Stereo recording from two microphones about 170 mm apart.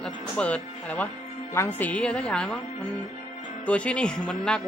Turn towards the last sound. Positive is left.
turn(degrees=5)  # may be behind; listen again after turning